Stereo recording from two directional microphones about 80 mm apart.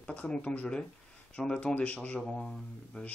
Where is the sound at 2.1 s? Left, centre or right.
Centre.